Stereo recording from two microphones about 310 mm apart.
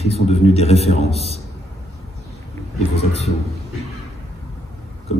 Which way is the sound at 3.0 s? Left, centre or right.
Left.